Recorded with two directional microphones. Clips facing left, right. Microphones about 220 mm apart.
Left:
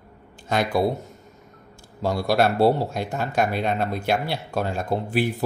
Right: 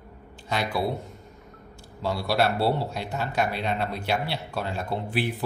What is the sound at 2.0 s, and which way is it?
Speech, 45° left (ahead or behind).